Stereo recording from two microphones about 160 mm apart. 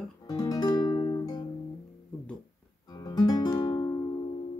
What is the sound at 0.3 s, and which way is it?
Guitar, 25° left (ahead or behind).